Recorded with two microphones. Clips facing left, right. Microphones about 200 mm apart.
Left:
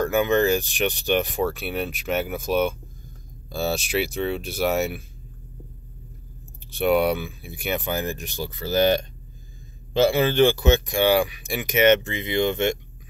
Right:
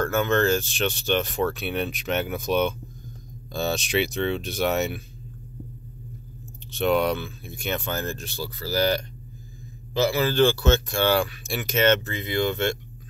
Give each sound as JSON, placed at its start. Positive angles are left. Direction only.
{"t": 0.0, "sound": "speech", "side_deg": 15}
{"t": 6.7, "sound": "speech", "side_deg": 10}